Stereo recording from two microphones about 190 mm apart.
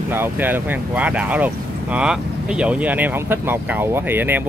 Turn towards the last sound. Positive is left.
turn(degrees=-10)  # may be behind; listen again after turning